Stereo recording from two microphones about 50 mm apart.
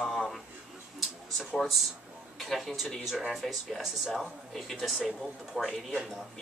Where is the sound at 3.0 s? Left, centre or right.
Centre.